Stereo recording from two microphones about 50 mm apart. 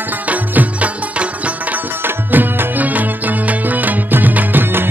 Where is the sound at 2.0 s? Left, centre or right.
Right.